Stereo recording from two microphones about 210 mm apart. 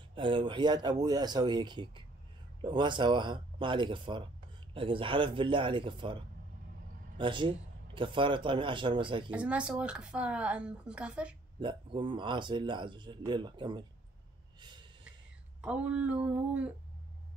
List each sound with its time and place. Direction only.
0.1 s speech: 25° right (ahead or behind)
7.2 s speech: 25° right (ahead or behind)
9.3 s speech: 5° right (ahead or behind)
11.6 s speech: 25° right (ahead or behind)
14.6 s snort: 20° right (ahead or behind)
15.6 s speech: 5° right (ahead or behind)